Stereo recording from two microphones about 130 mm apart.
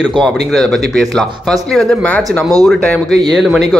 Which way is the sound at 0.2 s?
5° left (ahead or behind).